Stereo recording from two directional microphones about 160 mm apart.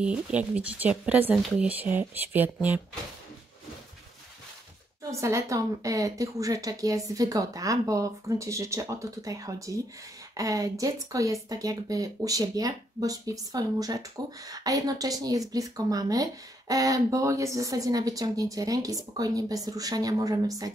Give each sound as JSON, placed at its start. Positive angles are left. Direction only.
{"t": 0.0, "sound": "speech", "side_deg": -5}
{"t": 5.2, "sound": "speech", "side_deg": -20}